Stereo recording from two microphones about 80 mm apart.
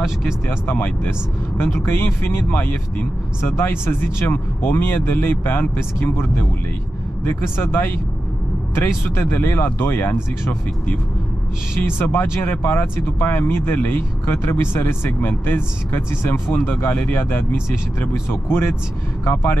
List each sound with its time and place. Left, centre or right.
0.5 s speech: left
11.8 s speech: left